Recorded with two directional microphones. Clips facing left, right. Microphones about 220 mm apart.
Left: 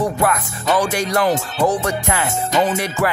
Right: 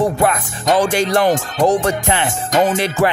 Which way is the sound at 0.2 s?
25° right (ahead or behind).